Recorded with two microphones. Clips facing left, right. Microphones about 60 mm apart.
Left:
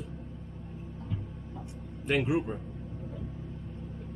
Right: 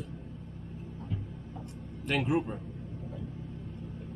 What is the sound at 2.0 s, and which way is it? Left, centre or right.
Speech, centre.